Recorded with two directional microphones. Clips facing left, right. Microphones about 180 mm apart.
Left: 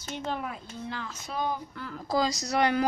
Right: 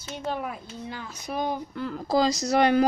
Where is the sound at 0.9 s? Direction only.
15° right (ahead or behind).